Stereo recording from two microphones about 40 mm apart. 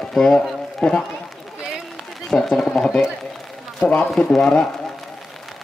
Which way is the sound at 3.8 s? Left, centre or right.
Left.